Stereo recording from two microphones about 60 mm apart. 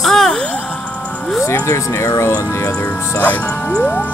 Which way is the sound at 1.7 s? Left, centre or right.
Left.